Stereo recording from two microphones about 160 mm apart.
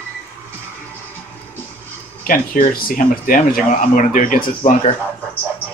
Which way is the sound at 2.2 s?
60° left (ahead or behind).